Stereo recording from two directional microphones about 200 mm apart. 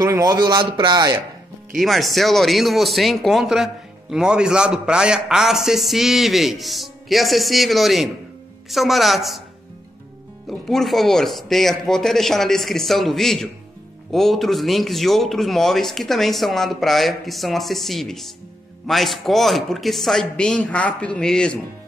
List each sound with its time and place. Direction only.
0.0 s speech: 20° right (ahead or behind)
1.8 s speech: centre (ahead or behind)
10.4 s speech: centre (ahead or behind)